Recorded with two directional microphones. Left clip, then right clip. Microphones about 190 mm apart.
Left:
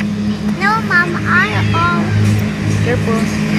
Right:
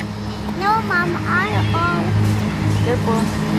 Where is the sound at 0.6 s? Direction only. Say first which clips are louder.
Left 4 dB; 5° left (ahead or behind).